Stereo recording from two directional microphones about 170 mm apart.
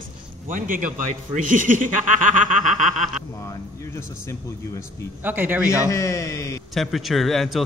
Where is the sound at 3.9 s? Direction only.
15° left (ahead or behind).